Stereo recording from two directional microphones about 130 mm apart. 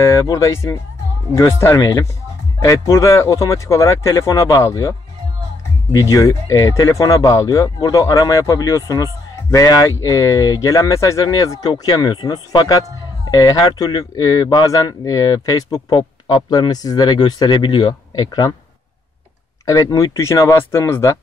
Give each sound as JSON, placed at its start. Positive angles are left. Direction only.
{"t": 0.0, "sound": "speech", "side_deg": 25}
{"t": 5.9, "sound": "speech", "side_deg": 25}
{"t": 19.6, "sound": "speech", "side_deg": 25}